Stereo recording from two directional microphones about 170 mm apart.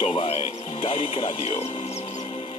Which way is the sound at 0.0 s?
35° left (ahead or behind).